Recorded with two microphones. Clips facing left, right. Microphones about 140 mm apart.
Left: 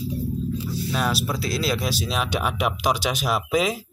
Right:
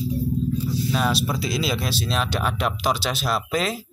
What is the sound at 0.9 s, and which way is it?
Speech, centre (ahead or behind).